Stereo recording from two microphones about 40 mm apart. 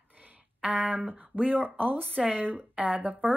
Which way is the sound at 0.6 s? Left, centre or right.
Right.